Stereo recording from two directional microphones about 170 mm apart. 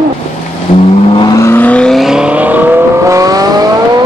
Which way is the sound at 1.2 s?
20° left (ahead or behind).